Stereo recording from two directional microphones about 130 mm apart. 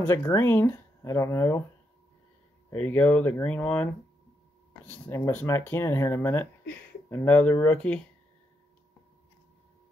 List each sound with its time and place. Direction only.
0.0 s speech: 20° left (ahead or behind)
2.7 s speech: 15° left (ahead or behind)